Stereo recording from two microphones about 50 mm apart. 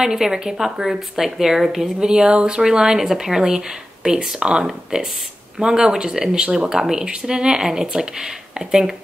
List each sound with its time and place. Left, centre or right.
0.0 s speech: centre
2.0 s speech: centre